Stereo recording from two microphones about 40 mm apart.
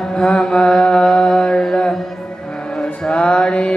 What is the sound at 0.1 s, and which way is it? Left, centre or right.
Mantra, left.